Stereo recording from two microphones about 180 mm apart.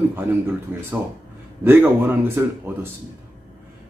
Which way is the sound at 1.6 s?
10° right (ahead or behind).